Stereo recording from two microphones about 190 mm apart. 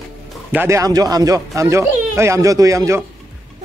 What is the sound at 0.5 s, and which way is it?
Speech, 15° right (ahead or behind).